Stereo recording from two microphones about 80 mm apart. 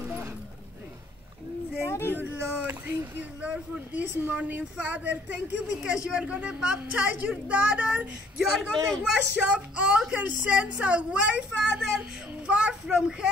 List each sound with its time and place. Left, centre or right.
1.9 s a sound: left
2.1 s a woman's voice: right
8.4 s a woman's voice: centre